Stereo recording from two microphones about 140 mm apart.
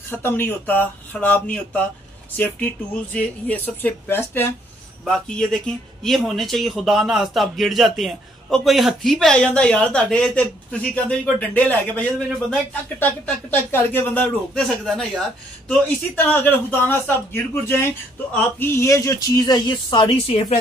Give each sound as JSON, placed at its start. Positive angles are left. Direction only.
{"t": 0.1, "sound": "speech", "side_deg": 15}
{"t": 5.0, "sound": "speech", "side_deg": 5}
{"t": 14.9, "sound": "speech", "side_deg": 5}